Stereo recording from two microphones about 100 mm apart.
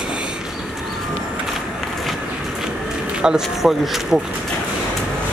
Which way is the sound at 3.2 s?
5° right (ahead or behind).